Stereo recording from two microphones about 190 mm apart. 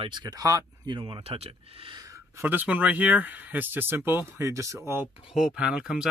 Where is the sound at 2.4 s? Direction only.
10° right (ahead or behind).